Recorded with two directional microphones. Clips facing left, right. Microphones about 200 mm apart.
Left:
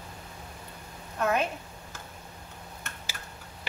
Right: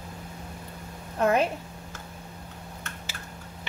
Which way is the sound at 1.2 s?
30° right (ahead or behind).